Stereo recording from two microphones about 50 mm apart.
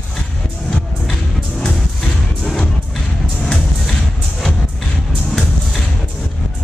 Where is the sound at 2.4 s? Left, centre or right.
Centre.